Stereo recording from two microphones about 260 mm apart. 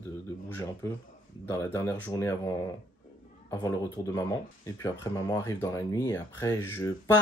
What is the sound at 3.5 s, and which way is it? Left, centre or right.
Speech, centre.